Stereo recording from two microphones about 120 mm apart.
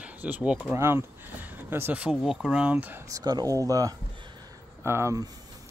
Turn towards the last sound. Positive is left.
turn(degrees=-25)  # may be behind; listen again after turning